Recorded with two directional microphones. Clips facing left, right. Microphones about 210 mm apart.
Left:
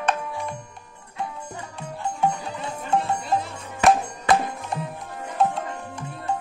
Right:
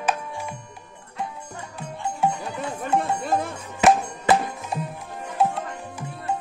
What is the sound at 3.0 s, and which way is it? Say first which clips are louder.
Music: right 1 dB; 50° right (ahead or behind).